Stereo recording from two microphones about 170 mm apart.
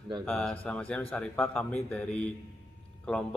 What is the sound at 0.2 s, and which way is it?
A man's voice, 5° left (ahead or behind).